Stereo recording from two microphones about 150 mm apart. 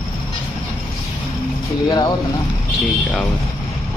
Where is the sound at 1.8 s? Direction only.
25° left (ahead or behind).